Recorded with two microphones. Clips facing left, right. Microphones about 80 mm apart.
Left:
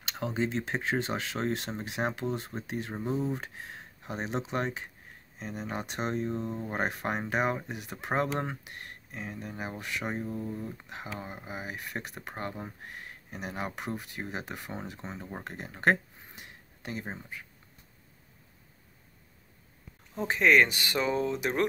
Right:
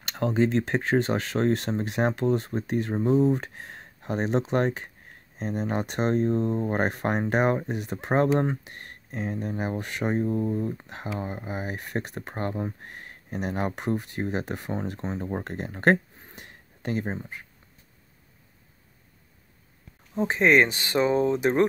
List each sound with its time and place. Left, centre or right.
0.2 s speech: right
15.4 s a sound: right
17.0 s speech: right
20.2 s speech: right